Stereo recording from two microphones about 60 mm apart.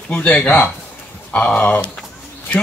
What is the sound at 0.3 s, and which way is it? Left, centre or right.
Speech, left.